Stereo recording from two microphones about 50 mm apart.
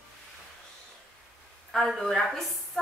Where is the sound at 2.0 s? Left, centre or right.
Centre.